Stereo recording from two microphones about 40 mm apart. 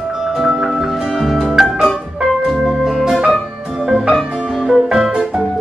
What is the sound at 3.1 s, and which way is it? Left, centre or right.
Music, centre.